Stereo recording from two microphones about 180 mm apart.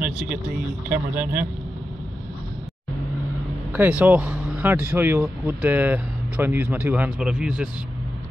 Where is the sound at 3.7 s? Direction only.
10° right (ahead or behind).